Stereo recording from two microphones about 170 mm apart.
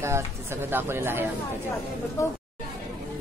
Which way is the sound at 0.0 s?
15° right (ahead or behind).